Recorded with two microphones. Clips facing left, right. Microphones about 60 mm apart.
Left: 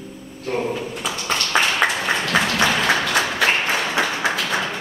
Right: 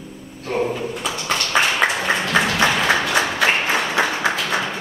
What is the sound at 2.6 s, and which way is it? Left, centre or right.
Applause, centre.